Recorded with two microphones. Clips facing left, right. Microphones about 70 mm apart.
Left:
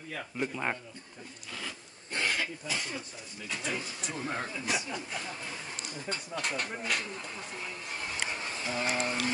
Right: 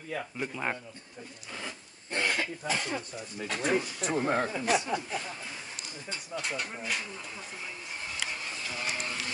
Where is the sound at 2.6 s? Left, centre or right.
Right.